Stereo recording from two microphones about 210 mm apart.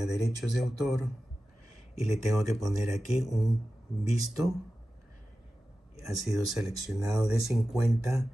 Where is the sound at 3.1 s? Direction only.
Centre (ahead or behind).